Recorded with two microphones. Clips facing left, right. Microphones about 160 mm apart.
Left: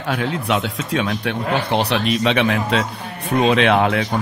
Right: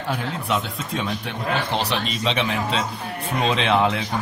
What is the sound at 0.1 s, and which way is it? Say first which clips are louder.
A man's voice: left 5 dB; 80° left.